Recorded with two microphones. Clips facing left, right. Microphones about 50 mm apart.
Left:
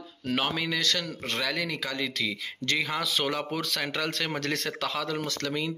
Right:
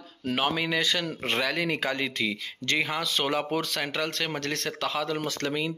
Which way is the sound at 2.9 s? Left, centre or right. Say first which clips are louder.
Even; centre.